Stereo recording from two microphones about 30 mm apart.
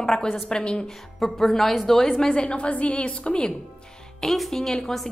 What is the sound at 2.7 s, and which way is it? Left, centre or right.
Speech, left.